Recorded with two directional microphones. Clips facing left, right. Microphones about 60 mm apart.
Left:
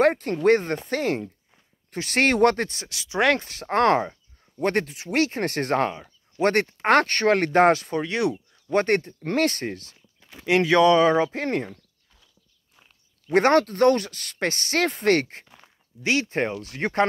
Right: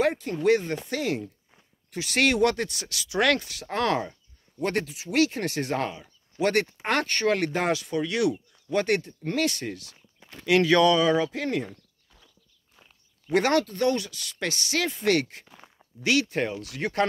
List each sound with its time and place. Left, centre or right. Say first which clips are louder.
0.0 s speech: left 4 dB; left
2.9 s speech: left 2 dB; left
3.4 s speech: left 6 dB; left
10.4 s speech: left 2 dB; left
11.0 s speech: left 4 dB; left
11.6 s a sound: left 2 dB; centre
13.3 s speech: left 4 dB; left
15.4 s walk: right 2 dB; centre
16.0 s speech: left 1 dB; left